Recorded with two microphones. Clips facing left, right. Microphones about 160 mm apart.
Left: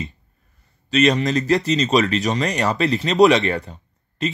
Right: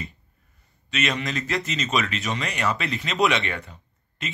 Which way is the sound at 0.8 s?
35° left (ahead or behind).